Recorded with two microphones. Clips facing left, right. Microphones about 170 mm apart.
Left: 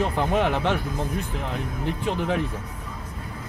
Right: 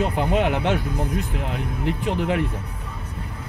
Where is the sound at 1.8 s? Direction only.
15° right (ahead or behind).